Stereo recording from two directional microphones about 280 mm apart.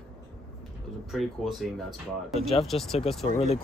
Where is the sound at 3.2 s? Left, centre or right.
Left.